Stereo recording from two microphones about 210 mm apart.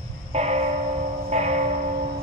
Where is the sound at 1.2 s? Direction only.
35° right (ahead or behind).